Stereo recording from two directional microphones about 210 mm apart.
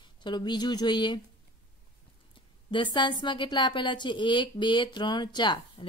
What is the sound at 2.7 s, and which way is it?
Speech, 20° left (ahead or behind).